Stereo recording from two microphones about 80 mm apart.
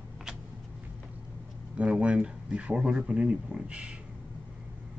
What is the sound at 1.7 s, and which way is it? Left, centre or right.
Speech, centre.